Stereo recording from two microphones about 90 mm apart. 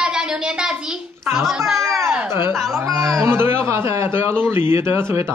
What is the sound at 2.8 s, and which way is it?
Speech, 35° right (ahead or behind).